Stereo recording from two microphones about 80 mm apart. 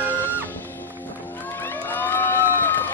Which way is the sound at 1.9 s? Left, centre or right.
Left.